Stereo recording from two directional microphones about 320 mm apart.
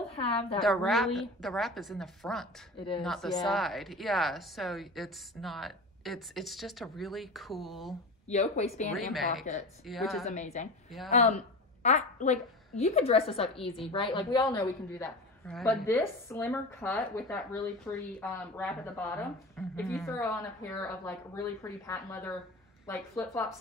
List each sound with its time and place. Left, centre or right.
0.0 s a woman's voice: centre
0.6 s a woman's voice: centre
8.3 s speech: left
9.8 s a woman's voice: centre
10.2 s a woman's voice: left